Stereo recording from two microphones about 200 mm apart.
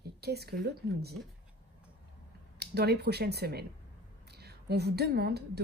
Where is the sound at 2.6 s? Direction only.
55° right (ahead or behind).